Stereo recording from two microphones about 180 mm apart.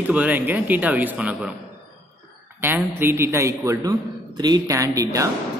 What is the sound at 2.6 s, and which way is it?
A woman's voice, 10° right (ahead or behind).